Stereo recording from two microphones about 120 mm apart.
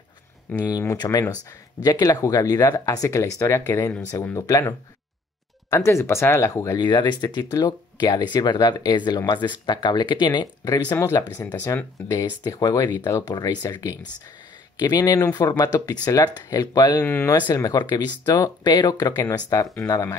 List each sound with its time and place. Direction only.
0.7 s speech: 30° left (ahead or behind)
4.5 s speech: 30° left (ahead or behind)
10.9 s speech: 25° left (ahead or behind)
17.0 s speech: 15° left (ahead or behind)
17.3 s speech: 35° left (ahead or behind)